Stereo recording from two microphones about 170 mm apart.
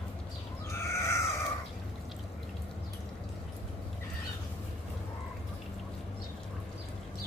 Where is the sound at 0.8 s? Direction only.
15° left (ahead or behind).